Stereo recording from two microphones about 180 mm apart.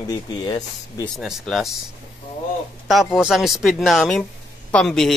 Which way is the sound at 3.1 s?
Centre (ahead or behind).